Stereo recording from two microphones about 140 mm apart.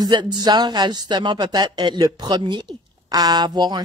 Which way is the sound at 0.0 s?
30° right (ahead or behind).